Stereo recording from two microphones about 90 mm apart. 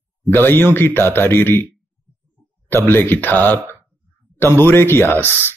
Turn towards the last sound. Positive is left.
turn(degrees=25)  # may be behind; listen again after turning